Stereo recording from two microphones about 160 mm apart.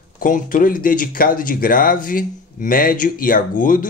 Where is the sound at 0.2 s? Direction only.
55° left (ahead or behind).